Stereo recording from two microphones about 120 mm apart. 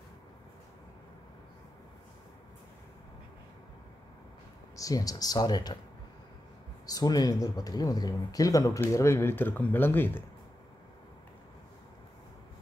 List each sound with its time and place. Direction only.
4.7 s speech: 30° left (ahead or behind)
6.9 s speech: 30° left (ahead or behind); by 10.2 s 15° left (ahead or behind)